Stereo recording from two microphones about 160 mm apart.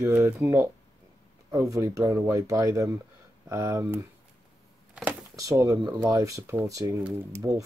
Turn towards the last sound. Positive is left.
turn(degrees=-15)  # may be behind; listen again after turning